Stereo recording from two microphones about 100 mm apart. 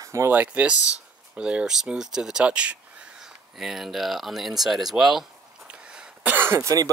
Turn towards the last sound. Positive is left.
turn(degrees=-30)  # may be behind; listen again after turning